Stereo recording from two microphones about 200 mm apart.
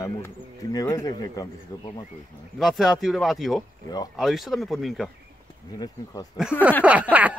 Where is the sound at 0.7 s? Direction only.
20° left (ahead or behind).